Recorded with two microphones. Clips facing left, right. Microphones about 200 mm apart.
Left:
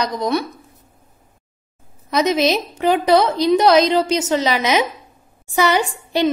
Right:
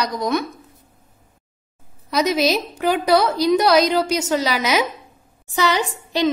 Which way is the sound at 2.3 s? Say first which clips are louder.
Left 1 dB; 5° right (ahead or behind).